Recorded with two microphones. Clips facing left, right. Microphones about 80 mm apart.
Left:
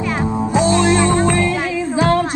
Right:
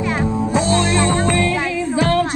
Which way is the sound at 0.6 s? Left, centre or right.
Left.